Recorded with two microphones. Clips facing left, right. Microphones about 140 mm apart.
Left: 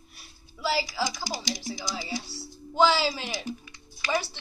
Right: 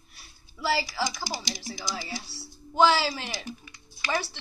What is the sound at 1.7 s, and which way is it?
Speech, 20° left (ahead or behind).